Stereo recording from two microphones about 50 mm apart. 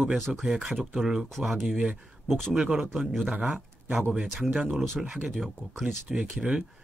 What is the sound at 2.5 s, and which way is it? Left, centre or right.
Speech, centre.